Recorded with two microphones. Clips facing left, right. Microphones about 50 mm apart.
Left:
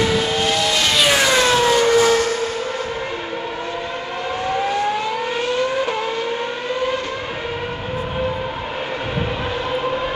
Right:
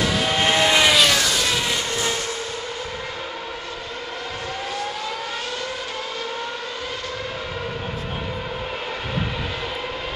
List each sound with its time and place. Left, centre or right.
0.4 s vehicle: right
1.1 s vehicle: left
1.7 s a sound: left